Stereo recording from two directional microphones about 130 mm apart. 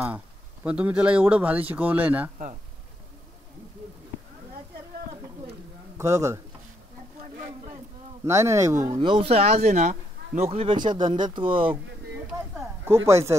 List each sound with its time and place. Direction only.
0.7 s speech: 10° right (ahead or behind)
5.9 s speech: 20° right (ahead or behind)
7.2 s a sound: 70° right (ahead or behind)
8.3 s speech: 20° right (ahead or behind)
8.9 s speech: 45° right (ahead or behind)
10.8 s speech: 35° right (ahead or behind)
12.5 s speech: 20° right (ahead or behind)